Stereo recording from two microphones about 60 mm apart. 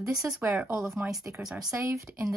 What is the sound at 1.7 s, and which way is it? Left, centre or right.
Speech, right.